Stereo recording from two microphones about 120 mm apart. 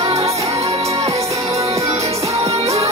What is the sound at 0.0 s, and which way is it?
Music, 60° right (ahead or behind).